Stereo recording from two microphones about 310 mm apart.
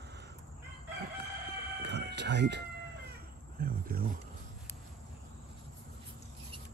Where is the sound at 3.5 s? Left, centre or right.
Right.